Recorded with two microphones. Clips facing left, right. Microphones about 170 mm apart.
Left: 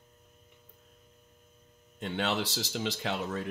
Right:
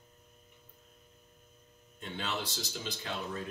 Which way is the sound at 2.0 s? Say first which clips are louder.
Left 6 dB; 90° left.